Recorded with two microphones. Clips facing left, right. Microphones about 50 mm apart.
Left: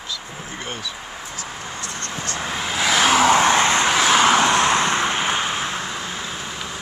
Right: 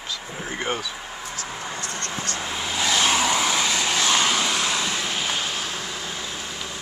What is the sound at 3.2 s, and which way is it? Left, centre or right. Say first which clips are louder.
Vehicle: left 7 dB; left.